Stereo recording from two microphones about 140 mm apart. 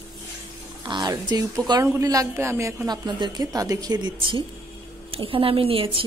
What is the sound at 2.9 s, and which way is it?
A woman's voice, 35° right (ahead or behind).